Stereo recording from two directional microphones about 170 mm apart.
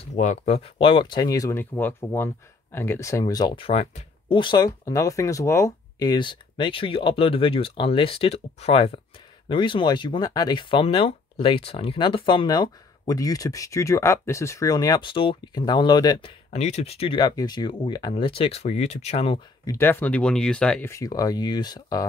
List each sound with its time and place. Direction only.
0.1 s speech: 45° left (ahead or behind); by 16.3 s 25° left (ahead or behind)
16.5 s speech: 40° left (ahead or behind)
19.6 s speech: 15° left (ahead or behind)
20.9 s speech: 20° left (ahead or behind)